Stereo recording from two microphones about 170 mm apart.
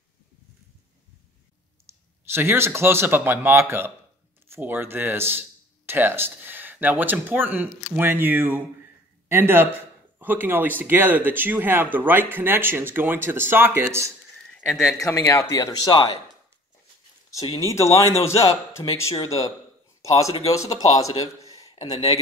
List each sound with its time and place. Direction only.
2.3 s speech: 15° right (ahead or behind)
14.7 s speech: 5° right (ahead or behind)
15.0 s speech: 20° left (ahead or behind)
17.6 s a man's voice: 15° left (ahead or behind)